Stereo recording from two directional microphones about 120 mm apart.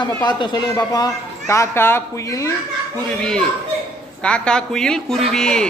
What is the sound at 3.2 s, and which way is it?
A man's voice, 5° left (ahead or behind).